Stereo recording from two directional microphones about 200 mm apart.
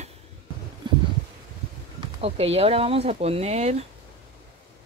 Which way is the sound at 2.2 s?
30° right (ahead or behind).